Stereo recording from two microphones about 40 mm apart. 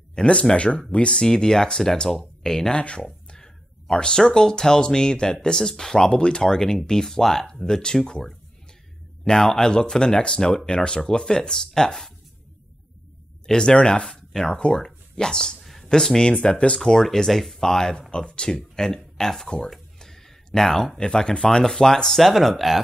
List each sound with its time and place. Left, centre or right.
0.1 s speech: left
9.7 s speech: left
13.5 s speech: left
14.0 s a sound: centre
14.5 s speech: left
16.5 s speech: left
16.8 s speech: centre
18.1 s speech: left
19.7 s a sound: centre
21.0 s speech: left
22.2 s speech: centre